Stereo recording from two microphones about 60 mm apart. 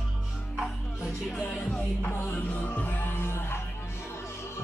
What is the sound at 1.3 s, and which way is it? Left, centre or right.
Music, left.